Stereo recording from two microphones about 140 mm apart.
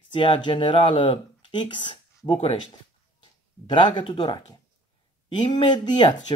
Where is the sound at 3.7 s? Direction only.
35° left (ahead or behind).